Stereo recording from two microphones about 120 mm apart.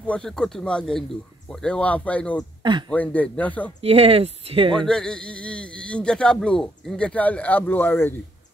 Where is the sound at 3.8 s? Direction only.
55° right (ahead or behind).